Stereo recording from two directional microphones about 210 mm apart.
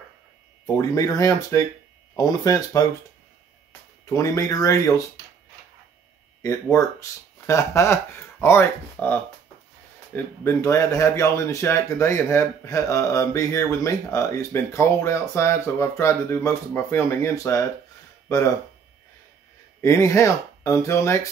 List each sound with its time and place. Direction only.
0.7 s speech: 15° left (ahead or behind)
4.0 s speech: 15° left (ahead or behind)
6.4 s speech: 15° left (ahead or behind)
19.8 s speech: 15° left (ahead or behind)